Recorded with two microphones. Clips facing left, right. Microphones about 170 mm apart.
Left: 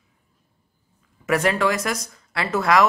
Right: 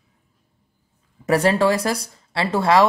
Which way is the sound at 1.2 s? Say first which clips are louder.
Right 3 dB; 35° right (ahead or behind).